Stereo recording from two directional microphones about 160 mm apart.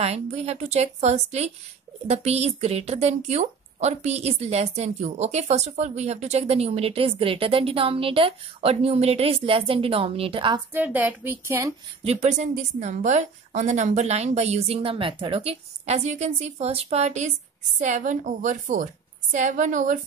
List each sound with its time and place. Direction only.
0.0 s a woman's voice: 40° right (ahead or behind)
10.7 s a woman's voice: 10° right (ahead or behind)
12.0 s a woman's voice: 40° right (ahead or behind)